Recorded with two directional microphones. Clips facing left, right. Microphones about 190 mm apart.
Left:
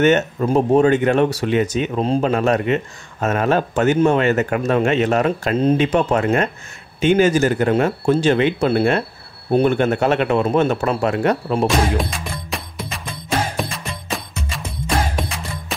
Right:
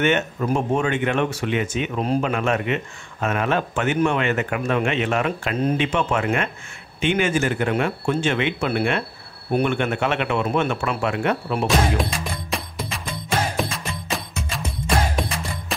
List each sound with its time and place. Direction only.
0.0 s speech: 35° left (ahead or behind)
11.6 s music: centre (ahead or behind)